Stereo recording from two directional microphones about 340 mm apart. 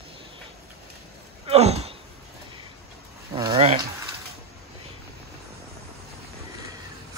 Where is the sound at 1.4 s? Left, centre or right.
Centre.